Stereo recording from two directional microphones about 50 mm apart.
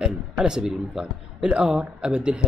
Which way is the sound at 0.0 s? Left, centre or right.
Centre.